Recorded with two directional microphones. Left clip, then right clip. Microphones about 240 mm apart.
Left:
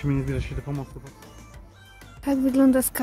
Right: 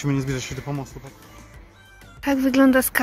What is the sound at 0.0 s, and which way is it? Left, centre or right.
Speech, right.